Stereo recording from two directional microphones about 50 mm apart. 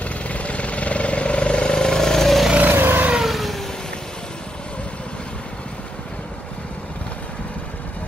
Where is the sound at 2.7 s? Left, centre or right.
Right.